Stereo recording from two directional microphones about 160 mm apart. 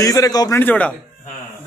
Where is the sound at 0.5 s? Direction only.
10° left (ahead or behind).